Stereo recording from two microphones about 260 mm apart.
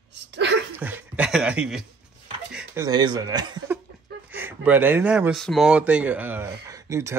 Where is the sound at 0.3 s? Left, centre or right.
Right.